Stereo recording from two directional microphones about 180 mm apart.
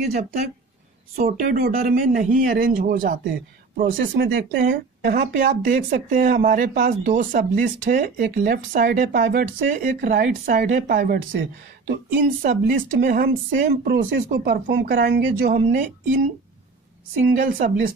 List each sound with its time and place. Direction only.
0.0 s speech: 55° right (ahead or behind)
17.6 s speech: 50° right (ahead or behind)